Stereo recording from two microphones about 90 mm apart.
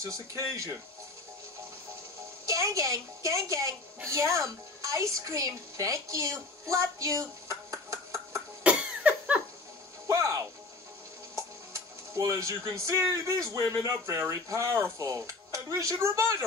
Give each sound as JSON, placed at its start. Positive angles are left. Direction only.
{"t": 0.0, "sound": "speech", "side_deg": -40}
{"t": 2.4, "sound": "a woman's voice", "side_deg": -40}
{"t": 8.6, "sound": "a sound", "side_deg": -15}
{"t": 10.0, "sound": "music", "side_deg": -35}
{"t": 12.7, "sound": "speech", "side_deg": -40}